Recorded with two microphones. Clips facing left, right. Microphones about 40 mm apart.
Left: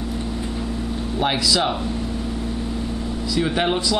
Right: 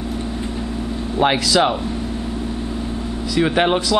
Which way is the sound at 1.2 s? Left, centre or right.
Right.